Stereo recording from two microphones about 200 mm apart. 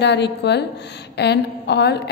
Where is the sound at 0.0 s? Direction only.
60° left (ahead or behind).